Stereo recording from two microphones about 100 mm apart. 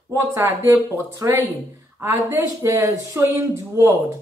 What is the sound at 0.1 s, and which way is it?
Speech, 30° right (ahead or behind).